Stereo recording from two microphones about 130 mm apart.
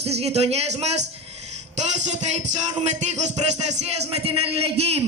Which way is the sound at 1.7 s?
60° right (ahead or behind).